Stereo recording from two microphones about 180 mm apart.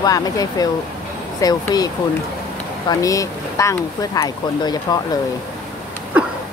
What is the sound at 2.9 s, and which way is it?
Speech, 20° left (ahead or behind).